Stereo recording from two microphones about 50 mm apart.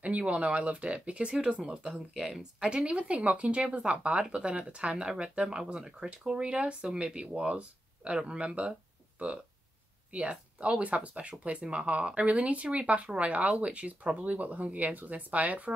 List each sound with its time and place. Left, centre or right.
0.0 s speech: right
2.1 s speech: centre
10.1 s speech: right